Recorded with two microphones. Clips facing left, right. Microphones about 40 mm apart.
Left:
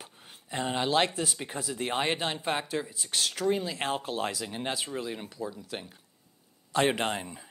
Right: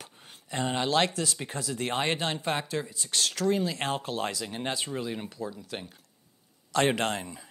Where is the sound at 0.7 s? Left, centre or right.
Left.